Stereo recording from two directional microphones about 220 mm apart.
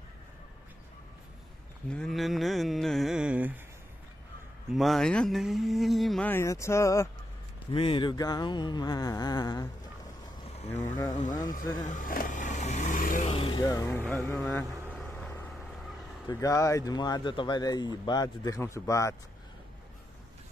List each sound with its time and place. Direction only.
1.9 s mantra: centre (ahead or behind)
4.7 s speech: centre (ahead or behind); by 9.7 s 15° left (ahead or behind)
10.6 s speech: 30° left (ahead or behind)
11.8 s vehicle: 35° left (ahead or behind)
13.3 s vehicle: 25° left (ahead or behind); by 15.5 s 5° left (ahead or behind)
16.3 s speech: 15° left (ahead or behind)